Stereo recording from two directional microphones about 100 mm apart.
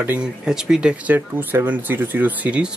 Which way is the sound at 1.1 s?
20° right (ahead or behind).